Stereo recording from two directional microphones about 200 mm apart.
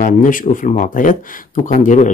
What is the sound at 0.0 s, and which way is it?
Speech, 40° left (ahead or behind).